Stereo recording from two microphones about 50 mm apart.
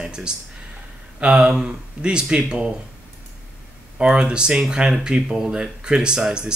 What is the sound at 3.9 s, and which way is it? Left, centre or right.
Speech, centre.